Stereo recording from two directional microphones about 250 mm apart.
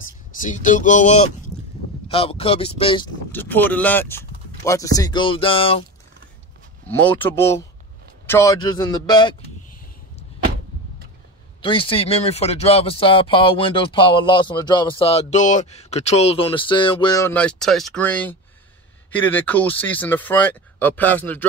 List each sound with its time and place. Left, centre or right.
0.0 s speech: left
3.3 s speech: centre
6.9 s speech: centre
11.6 s speech: centre